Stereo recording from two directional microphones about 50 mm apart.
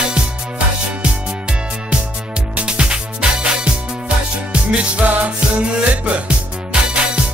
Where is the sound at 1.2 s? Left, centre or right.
Centre.